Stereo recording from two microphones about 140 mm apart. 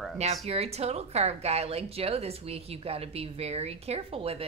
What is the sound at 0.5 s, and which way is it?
A woman's voice, 50° right (ahead or behind).